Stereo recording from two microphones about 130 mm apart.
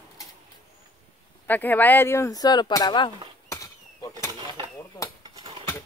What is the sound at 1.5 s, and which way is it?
Speech, 15° left (ahead or behind).